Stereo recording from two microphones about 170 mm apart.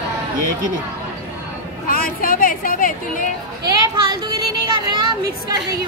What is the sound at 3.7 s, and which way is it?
Speech, 25° right (ahead or behind).